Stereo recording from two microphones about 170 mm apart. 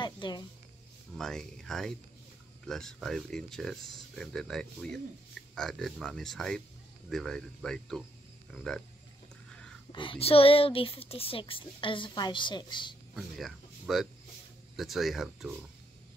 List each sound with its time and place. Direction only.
0.0 s a sound: 25° left (ahead or behind)
1.1 s speech: 5° left (ahead or behind)
9.9 s speech: 30° left (ahead or behind)
13.1 s speech: centre (ahead or behind)